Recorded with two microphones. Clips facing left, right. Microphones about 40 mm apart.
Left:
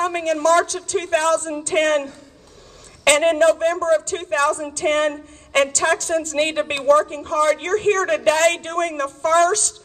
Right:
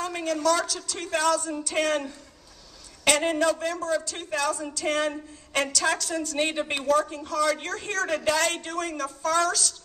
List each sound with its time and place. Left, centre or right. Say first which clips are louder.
0.0 s a woman's voice: left 7 dB; left
6.9 s a woman's voice: left 9 dB; left